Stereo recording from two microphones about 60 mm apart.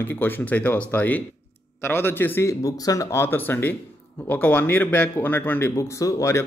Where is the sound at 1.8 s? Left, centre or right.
Left.